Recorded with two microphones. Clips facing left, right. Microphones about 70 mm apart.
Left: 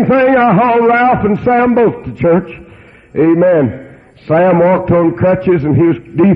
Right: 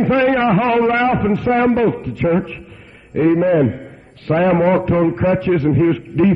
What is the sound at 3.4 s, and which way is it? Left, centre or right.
A man's voice, left.